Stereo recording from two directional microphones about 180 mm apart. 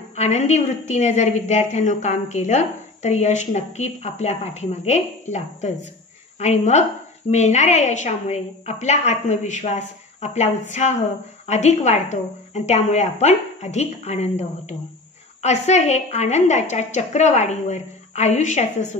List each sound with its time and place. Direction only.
0.1 s a woman's voice: 40° left (ahead or behind)